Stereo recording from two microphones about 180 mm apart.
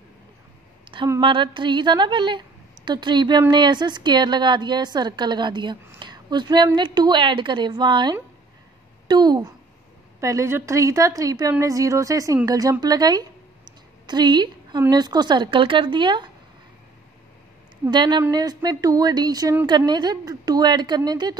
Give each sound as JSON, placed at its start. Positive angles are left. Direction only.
{"t": 0.9, "sound": "a woman's voice", "side_deg": -25}
{"t": 17.8, "sound": "speech", "side_deg": -25}